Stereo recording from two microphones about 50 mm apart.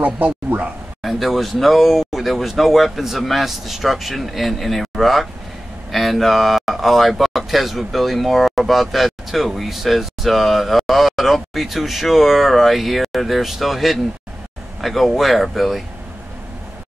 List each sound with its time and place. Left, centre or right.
0.0 s speech: right
1.0 s speech: centre